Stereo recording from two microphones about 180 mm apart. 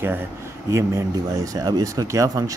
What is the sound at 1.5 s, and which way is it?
Speech, 20° right (ahead or behind).